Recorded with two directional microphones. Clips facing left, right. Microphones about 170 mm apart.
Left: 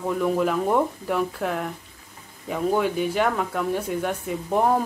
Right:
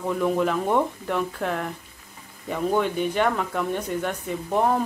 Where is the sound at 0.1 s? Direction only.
Centre (ahead or behind).